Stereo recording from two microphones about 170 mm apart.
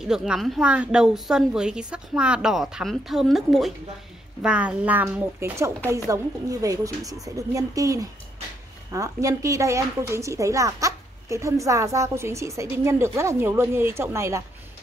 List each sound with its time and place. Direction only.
0.0 s a woman's voice: 5° right (ahead or behind)